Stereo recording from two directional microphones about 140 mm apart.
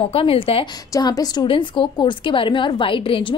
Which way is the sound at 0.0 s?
40° left (ahead or behind).